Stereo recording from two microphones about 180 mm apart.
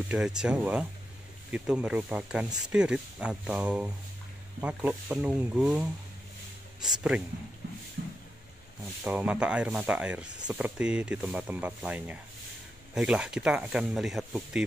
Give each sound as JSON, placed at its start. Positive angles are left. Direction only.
{"t": 0.1, "sound": "speech", "side_deg": -5}
{"t": 8.0, "sound": "a sound", "side_deg": -55}
{"t": 9.0, "sound": "speech", "side_deg": -10}